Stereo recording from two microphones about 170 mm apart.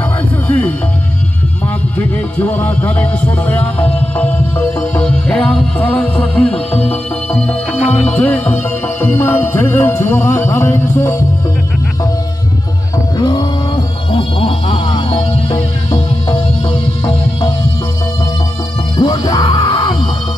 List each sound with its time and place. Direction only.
0.5 s music: 10° left (ahead or behind)
2.0 s music: 10° left (ahead or behind)
13.2 s music: 25° left (ahead or behind)
17.0 s music: 35° left (ahead or behind)
18.9 s music: 25° left (ahead or behind)